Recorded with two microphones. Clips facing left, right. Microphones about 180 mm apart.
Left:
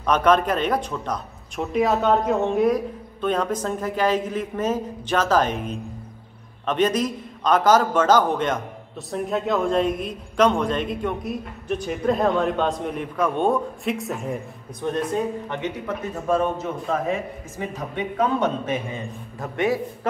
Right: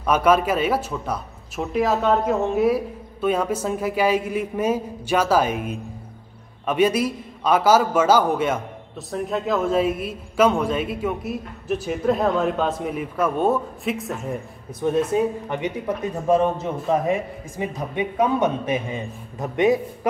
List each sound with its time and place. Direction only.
0.0 s a woman's voice: 10° right (ahead or behind)
16.9 s a man's voice: 15° right (ahead or behind)